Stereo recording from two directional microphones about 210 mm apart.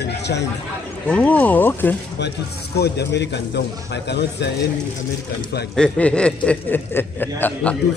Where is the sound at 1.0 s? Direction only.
5° left (ahead or behind).